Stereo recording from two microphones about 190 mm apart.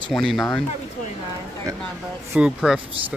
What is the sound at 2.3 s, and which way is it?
Speech, 5° right (ahead or behind).